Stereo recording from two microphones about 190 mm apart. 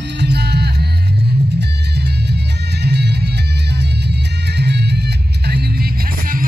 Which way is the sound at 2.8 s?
60° right (ahead or behind).